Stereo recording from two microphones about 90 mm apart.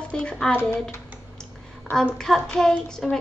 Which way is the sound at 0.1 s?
10° left (ahead or behind).